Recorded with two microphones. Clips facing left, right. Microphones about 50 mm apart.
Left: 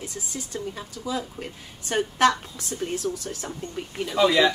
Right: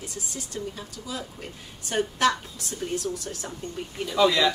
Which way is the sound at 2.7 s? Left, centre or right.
Centre.